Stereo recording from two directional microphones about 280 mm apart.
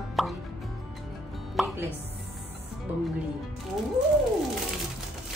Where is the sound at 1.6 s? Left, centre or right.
Centre.